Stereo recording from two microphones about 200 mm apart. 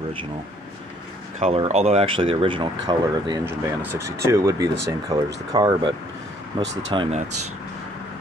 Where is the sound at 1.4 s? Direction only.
30° right (ahead or behind).